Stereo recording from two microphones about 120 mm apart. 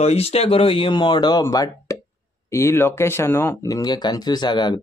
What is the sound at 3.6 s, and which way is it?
Speech, 30° left (ahead or behind).